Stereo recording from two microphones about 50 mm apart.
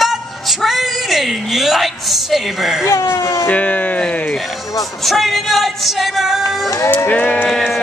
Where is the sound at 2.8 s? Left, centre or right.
Left.